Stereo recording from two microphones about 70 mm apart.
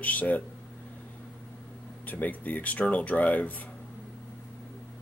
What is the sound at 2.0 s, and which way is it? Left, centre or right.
Speech, left.